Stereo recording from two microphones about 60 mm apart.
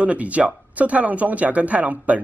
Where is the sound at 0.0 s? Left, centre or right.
Right.